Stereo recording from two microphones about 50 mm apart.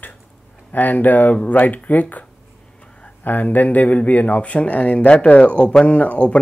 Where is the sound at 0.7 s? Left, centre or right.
Left.